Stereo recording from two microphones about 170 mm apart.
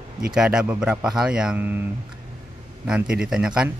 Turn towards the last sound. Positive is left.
turn(degrees=-5)  # may be behind; listen again after turning